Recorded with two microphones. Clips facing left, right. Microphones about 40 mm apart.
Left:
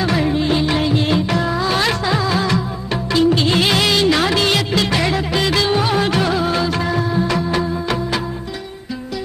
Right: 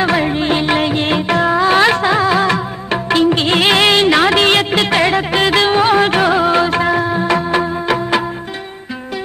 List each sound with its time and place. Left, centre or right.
0.0 s music: right